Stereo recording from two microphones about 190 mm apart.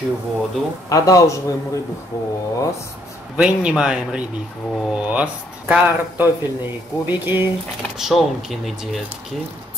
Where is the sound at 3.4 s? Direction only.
5° right (ahead or behind).